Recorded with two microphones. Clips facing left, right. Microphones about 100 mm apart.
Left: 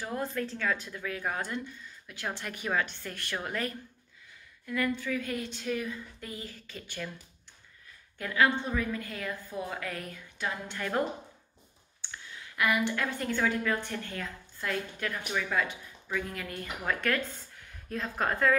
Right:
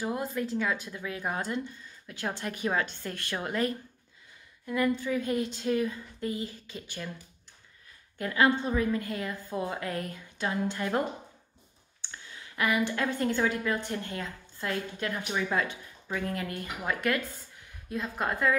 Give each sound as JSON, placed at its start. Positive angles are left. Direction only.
{"t": 0.0, "sound": "a woman's voice", "side_deg": -15}
{"t": 8.2, "sound": "a woman's voice", "side_deg": -25}
{"t": 12.5, "sound": "a woman's voice", "side_deg": -25}
{"t": 16.8, "sound": "a woman's voice", "side_deg": -15}